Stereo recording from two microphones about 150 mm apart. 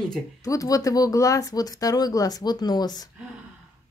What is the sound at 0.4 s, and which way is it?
Speech, 20° left (ahead or behind).